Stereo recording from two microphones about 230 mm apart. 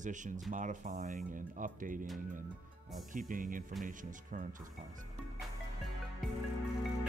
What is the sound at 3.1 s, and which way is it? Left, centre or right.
Speech, right.